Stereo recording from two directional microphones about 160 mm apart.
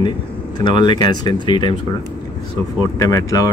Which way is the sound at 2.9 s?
20° left (ahead or behind).